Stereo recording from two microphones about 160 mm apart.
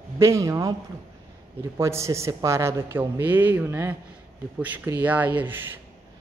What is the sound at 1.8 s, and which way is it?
Speech, 20° right (ahead or behind).